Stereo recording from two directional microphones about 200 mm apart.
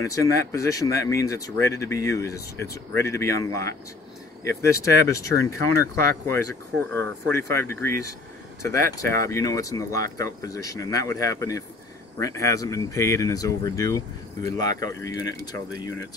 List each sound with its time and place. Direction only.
0.2 s speech: 15° left (ahead or behind)
4.6 s speech: 15° left (ahead or behind)